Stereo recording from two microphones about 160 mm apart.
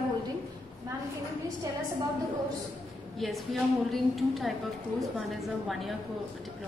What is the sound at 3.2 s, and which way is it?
A woman's voice, centre (ahead or behind).